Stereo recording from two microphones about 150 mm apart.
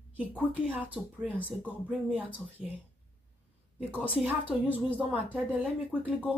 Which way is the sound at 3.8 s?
10° right (ahead or behind).